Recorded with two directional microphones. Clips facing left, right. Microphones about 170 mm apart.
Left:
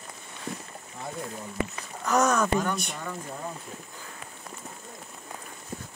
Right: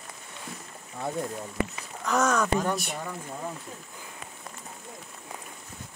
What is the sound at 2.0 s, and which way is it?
Speech, 5° left (ahead or behind).